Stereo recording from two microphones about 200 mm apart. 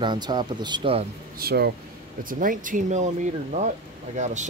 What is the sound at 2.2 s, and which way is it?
Speech, 40° right (ahead or behind).